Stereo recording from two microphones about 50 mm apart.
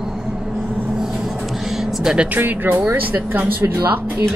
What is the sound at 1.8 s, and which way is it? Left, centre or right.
Music, centre.